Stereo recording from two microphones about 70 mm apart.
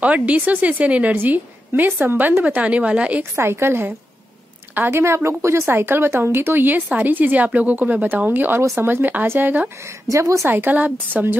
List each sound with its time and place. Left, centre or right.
0.0 s a woman's voice: centre
3.3 s a woman's voice: right
4.9 s a woman's voice: right
8.5 s a woman's voice: right
9.8 s speech: right
10.5 s a woman's voice: right